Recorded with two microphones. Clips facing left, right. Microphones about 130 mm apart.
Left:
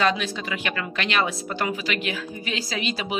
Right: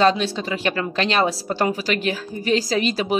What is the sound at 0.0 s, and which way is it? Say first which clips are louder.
A woman's voice: right 5 dB; 30° right (ahead or behind).